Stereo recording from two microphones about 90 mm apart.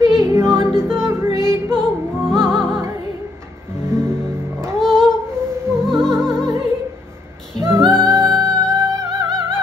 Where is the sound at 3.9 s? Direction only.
30° right (ahead or behind).